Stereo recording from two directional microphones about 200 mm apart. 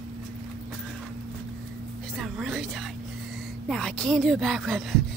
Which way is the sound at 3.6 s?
5° left (ahead or behind).